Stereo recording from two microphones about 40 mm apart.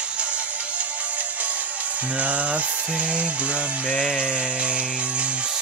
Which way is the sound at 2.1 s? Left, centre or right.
Right.